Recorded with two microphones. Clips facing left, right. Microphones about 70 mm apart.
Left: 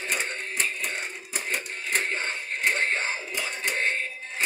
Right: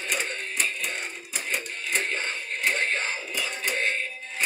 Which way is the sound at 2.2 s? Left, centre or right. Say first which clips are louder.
Left 1 dB; left.